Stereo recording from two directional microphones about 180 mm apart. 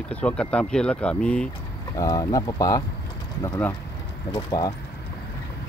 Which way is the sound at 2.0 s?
20° left (ahead or behind).